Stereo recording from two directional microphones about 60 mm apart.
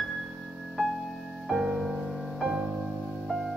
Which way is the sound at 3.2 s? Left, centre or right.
Centre.